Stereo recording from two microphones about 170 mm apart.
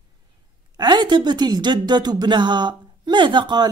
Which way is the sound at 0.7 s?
25° right (ahead or behind).